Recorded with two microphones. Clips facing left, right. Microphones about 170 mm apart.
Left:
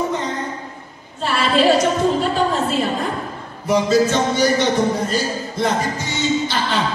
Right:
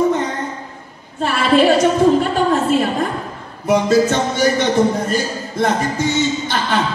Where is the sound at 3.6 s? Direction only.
55° right (ahead or behind).